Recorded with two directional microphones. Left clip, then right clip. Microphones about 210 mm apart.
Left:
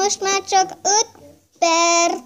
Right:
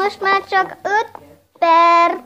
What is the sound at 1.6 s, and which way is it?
Child singing, 30° left (ahead or behind).